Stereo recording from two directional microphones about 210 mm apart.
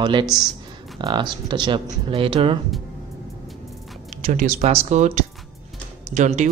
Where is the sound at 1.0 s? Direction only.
20° right (ahead or behind).